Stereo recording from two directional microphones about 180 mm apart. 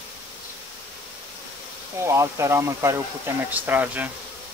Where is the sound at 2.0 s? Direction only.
15° right (ahead or behind).